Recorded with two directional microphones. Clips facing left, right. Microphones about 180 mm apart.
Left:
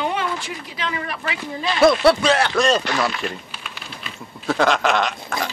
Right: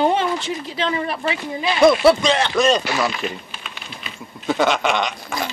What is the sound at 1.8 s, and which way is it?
Speech, centre (ahead or behind).